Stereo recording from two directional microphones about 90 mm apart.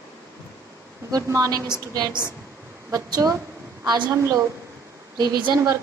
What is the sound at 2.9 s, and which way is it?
A woman's voice, 40° right (ahead or behind).